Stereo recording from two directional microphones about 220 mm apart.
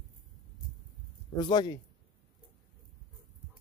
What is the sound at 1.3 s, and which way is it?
Speech, 20° left (ahead or behind).